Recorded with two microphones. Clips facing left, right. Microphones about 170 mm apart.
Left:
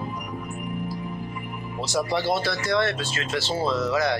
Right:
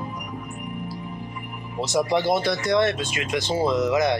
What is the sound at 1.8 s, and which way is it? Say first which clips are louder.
Speech: right 3 dB; 20° right (ahead or behind).